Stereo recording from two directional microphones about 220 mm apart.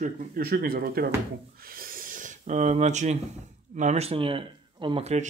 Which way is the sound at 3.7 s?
30° right (ahead or behind).